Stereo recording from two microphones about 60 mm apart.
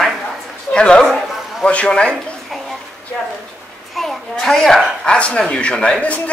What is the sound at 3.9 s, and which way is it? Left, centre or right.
A child's voice, centre.